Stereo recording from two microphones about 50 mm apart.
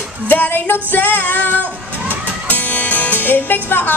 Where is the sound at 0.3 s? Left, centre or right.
Left.